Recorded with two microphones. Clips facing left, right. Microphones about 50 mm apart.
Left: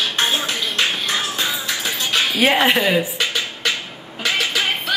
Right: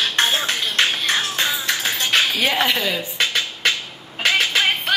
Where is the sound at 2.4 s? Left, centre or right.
Left.